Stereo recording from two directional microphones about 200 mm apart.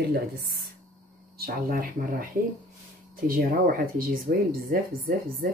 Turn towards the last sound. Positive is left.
turn(degrees=-45)  # may be behind; listen again after turning